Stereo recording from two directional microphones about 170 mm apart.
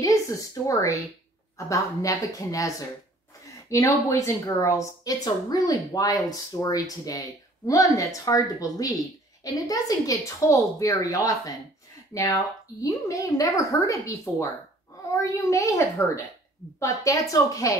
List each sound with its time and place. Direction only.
0.7 s a woman's voice: 20° left (ahead or behind)